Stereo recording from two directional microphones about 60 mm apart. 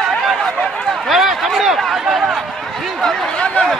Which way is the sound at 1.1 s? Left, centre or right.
Centre.